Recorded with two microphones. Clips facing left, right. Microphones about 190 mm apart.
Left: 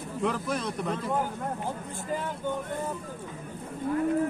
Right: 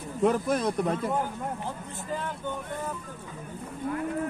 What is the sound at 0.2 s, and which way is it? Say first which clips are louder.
Speech: right 5 dB; 45° right (ahead or behind).